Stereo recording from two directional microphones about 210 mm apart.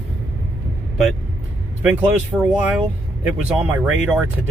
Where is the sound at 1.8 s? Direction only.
5° right (ahead or behind).